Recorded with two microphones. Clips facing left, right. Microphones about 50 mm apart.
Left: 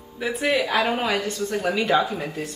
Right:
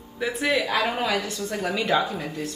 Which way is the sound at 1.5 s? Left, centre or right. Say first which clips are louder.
Left 2 dB; centre.